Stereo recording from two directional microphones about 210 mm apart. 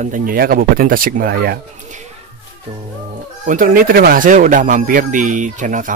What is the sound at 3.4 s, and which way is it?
Speech, 40° right (ahead or behind).